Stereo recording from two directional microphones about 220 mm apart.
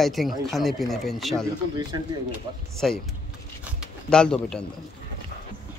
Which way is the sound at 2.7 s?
Centre (ahead or behind).